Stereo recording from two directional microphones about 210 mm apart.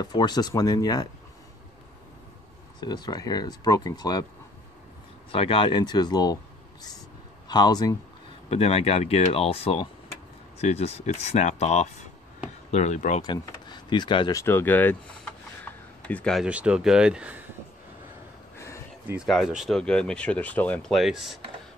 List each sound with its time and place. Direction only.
0.0 s speech: 20° left (ahead or behind)
2.8 s speech: 20° left (ahead or behind)
5.3 s speech: 25° left (ahead or behind)
7.4 s speech: 20° left (ahead or behind)
13.2 s speech: 20° left (ahead or behind)
15.7 s a sound: 10° left (ahead or behind)
16.1 s speech: 5° left (ahead or behind)
19.0 s speech: centre (ahead or behind)